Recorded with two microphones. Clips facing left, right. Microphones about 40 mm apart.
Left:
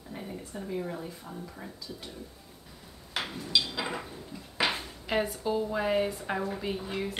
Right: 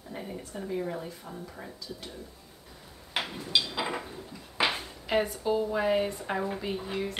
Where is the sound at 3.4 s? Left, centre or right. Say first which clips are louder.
Even; centre.